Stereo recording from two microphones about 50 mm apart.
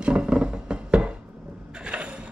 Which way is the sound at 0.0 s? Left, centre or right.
Centre.